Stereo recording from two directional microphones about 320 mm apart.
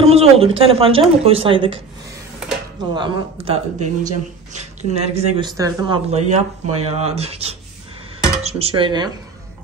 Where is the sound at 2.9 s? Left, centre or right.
Centre.